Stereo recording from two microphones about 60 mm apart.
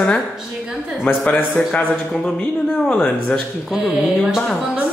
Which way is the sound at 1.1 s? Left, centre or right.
Left.